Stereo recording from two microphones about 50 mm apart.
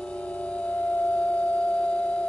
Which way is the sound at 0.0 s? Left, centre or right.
Left.